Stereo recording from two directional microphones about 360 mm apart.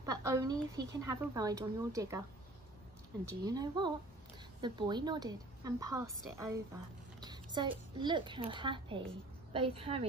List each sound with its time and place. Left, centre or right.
0.0 s a woman's voice: centre
3.4 s a woman's voice: centre